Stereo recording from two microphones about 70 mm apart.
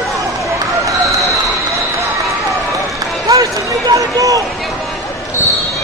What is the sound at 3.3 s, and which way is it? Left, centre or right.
Run, right.